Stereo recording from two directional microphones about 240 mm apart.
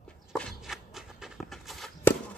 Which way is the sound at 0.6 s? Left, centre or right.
Centre.